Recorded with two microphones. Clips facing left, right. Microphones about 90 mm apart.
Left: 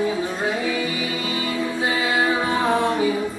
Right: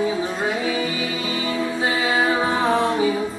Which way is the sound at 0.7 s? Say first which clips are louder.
Right 1 dB; 25° right (ahead or behind).